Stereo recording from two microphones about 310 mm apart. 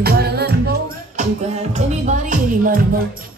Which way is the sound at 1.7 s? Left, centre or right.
Right.